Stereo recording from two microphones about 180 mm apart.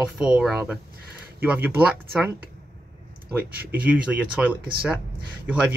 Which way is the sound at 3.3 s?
10° right (ahead or behind).